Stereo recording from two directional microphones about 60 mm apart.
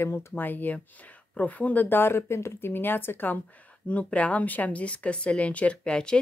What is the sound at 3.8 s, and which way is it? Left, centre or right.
Speech, left.